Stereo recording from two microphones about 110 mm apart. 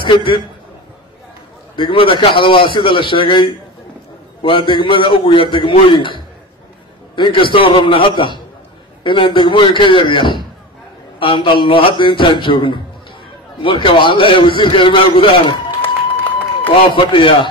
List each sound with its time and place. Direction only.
0.0 s a man's voice: 50° left (ahead or behind)
1.8 s a man's voice: 50° left (ahead or behind)
15.8 s run: 15° left (ahead or behind)
16.9 s a man's voice: 50° left (ahead or behind)